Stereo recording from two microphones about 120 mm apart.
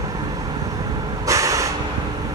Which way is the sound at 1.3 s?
25° right (ahead or behind).